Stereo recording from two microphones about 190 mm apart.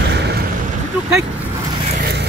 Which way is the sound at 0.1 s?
60° right (ahead or behind).